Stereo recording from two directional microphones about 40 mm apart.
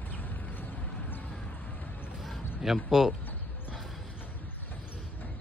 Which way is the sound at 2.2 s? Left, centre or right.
Centre.